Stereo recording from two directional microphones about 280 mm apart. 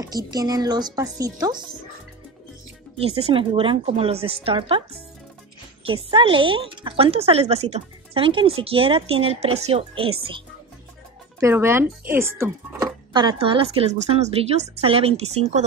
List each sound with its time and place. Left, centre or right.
0.3 s speech: centre
3.2 s speech: centre
6.0 s speech: centre
11.3 s speech: centre